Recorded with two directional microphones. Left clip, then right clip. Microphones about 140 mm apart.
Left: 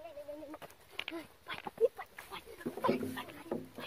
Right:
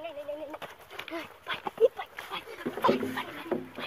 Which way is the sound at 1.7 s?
15° right (ahead or behind).